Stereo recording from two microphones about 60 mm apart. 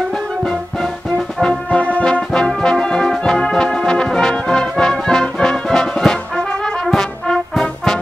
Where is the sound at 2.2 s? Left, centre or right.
Centre.